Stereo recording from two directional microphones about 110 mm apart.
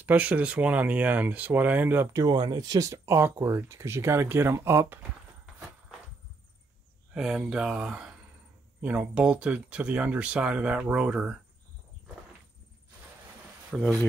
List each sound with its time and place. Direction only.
0.0 s speech: 15° right (ahead or behind)
2.1 s speech: 35° right (ahead or behind); by 5.0 s 20° right (ahead or behind)
7.2 s speech: 5° right (ahead or behind)
13.7 s speech: 5° right (ahead or behind)